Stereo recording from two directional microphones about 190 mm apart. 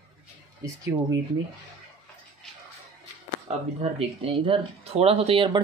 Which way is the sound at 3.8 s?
30° right (ahead or behind).